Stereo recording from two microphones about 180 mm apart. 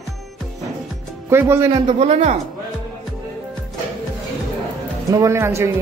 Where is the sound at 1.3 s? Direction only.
15° right (ahead or behind).